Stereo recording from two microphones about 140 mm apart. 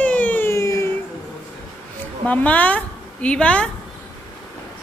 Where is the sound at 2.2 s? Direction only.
10° left (ahead or behind).